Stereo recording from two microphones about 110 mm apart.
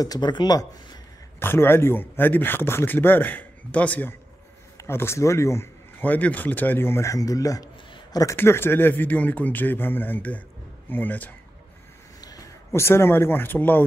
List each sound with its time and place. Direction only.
0.0 s speech: 40° left (ahead or behind)
1.4 s speech: 20° left (ahead or behind)
7.9 s a sound: 35° left (ahead or behind)
8.4 s speech: 20° left (ahead or behind)
12.2 s speech: 35° left (ahead or behind); by 13.8 s 20° left (ahead or behind)